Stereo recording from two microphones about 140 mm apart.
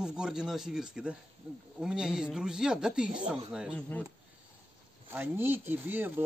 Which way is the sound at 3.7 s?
10° left (ahead or behind).